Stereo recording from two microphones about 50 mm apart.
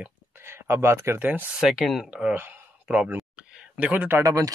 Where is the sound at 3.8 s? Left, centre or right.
Right.